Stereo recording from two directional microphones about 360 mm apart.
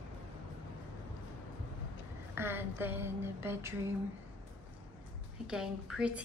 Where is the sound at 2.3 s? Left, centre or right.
Centre.